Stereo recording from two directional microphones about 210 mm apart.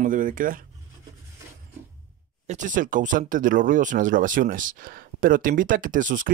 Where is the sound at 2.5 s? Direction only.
35° right (ahead or behind).